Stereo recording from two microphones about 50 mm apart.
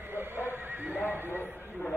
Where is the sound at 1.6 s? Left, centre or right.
Left.